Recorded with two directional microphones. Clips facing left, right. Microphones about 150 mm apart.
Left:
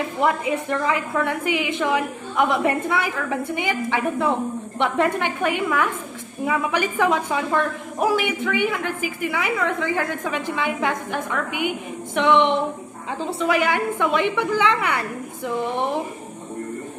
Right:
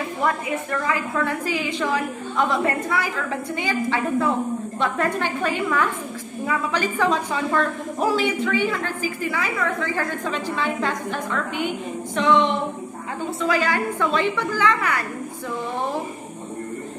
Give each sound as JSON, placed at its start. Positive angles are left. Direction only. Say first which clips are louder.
{"t": 0.2, "sound": "a woman's voice", "louder": "left 3 dB", "side_deg": 20}